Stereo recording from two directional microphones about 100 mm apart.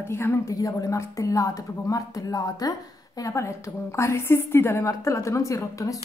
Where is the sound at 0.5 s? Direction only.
35° left (ahead or behind).